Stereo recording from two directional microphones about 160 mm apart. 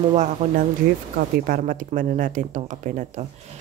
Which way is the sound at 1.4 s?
60° right (ahead or behind).